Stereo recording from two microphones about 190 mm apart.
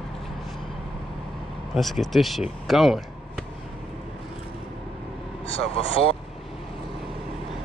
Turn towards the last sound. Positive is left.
turn(degrees=30)  # may be behind; listen again after turning